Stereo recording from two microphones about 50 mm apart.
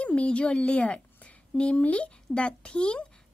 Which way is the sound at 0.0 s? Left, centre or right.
Left.